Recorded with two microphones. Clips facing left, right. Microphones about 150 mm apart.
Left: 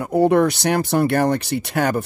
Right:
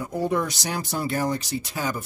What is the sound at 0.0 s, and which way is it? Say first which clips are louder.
Speech: left 10 dB; 65° left (ahead or behind).